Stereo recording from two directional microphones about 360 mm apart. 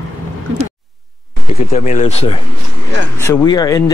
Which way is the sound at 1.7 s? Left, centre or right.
Centre.